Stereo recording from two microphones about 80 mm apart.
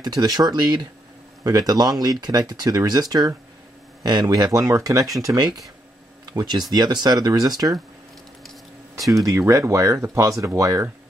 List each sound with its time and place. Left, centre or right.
0.0 s speech: right
5.2 s speech: right
9.1 s speech: right